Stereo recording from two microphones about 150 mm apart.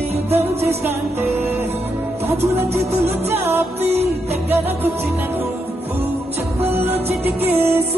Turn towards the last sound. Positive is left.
turn(degrees=-15)  # may be behind; listen again after turning